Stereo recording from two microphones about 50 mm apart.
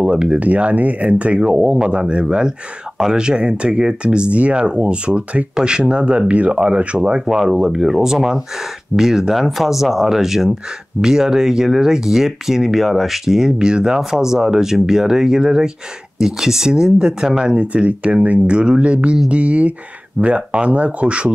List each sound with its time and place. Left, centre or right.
0.0 s speech: centre
1.4 s speech: centre
7.2 s speech: centre